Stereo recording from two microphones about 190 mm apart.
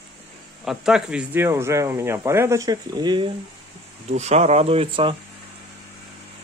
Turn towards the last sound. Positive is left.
turn(degrees=-30)  # may be behind; listen again after turning